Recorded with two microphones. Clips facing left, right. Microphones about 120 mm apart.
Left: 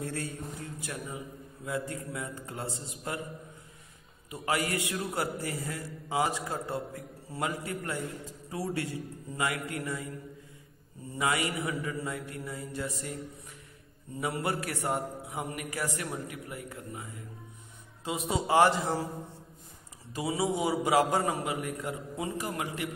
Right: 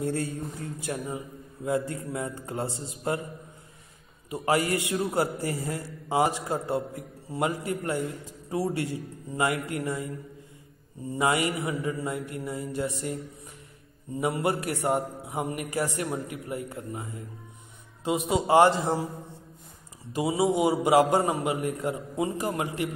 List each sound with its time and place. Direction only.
0.0 s a man's voice: 30° right (ahead or behind)
4.3 s a man's voice: 30° right (ahead or behind)
11.1 s a man's voice: 30° right (ahead or behind)
14.2 s a man's voice: 25° right (ahead or behind)
18.0 s a man's voice: 25° right (ahead or behind)
20.2 s a man's voice: 20° right (ahead or behind)